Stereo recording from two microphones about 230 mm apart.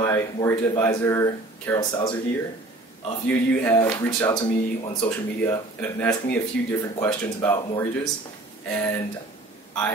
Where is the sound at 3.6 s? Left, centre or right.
Centre.